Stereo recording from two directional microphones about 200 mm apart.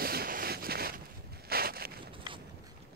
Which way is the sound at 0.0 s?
50° right (ahead or behind).